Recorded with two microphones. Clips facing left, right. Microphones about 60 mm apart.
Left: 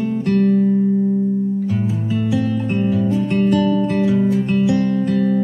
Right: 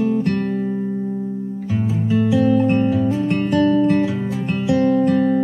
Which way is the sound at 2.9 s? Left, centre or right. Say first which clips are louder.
Left 1 dB; centre.